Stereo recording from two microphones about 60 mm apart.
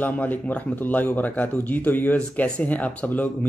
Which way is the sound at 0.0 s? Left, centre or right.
Left.